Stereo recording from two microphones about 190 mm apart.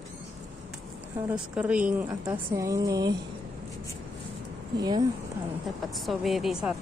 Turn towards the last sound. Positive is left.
turn(degrees=0)  # may be behind; listen again after turning